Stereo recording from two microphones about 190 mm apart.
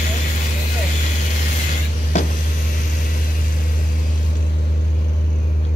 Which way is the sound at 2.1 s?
40° left (ahead or behind).